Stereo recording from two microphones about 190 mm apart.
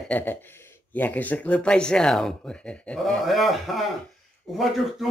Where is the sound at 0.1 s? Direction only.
10° left (ahead or behind).